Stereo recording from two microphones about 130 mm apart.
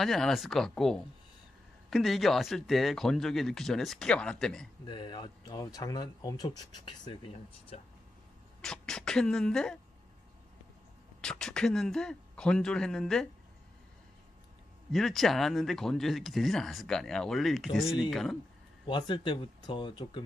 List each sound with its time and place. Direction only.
0.0 s speech: centre (ahead or behind)
4.8 s speech: 40° left (ahead or behind)
8.5 s speech: 5° left (ahead or behind)
11.1 s speech: 5° left (ahead or behind)
14.9 s speech: centre (ahead or behind)
18.9 s speech: 35° left (ahead or behind)